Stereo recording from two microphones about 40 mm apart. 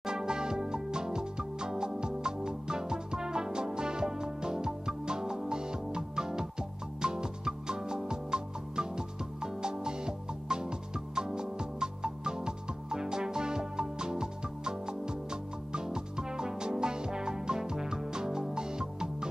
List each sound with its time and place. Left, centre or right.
0.0 s music: centre